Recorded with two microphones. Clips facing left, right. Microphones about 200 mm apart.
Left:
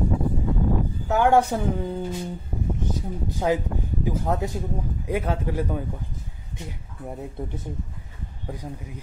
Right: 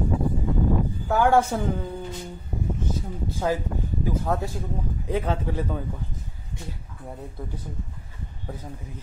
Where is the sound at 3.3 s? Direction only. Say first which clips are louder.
Left 2 dB; 15° left (ahead or behind).